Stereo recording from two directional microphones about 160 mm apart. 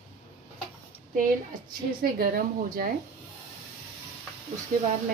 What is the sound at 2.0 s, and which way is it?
Speech, 65° right (ahead or behind).